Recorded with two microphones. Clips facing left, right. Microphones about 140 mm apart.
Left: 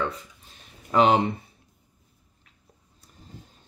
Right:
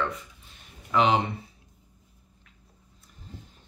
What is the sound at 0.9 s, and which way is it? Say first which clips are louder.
Speech: left 3 dB; 40° left (ahead or behind).